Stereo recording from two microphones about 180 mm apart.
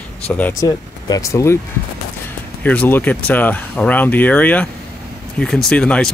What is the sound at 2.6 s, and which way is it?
Speech, 10° left (ahead or behind).